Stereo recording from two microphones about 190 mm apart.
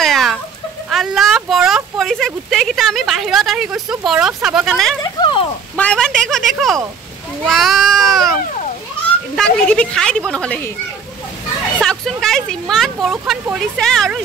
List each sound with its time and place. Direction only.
0.0 s a sound: centre (ahead or behind)
0.8 s speech: centre (ahead or behind)
5.0 s speech: 25° left (ahead or behind)
5.8 s speech: 5° left (ahead or behind)
11.8 s speech: centre (ahead or behind)